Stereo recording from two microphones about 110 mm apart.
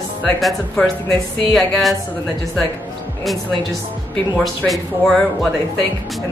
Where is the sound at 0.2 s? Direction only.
5° left (ahead or behind).